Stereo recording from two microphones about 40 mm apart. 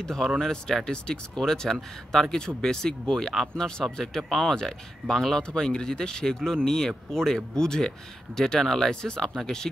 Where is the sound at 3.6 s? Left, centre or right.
Centre.